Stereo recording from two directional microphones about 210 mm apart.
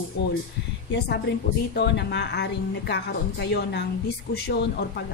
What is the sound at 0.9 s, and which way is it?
A woman's voice, 50° left (ahead or behind).